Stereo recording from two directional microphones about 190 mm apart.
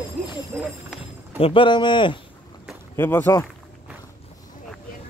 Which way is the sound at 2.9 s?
10° left (ahead or behind).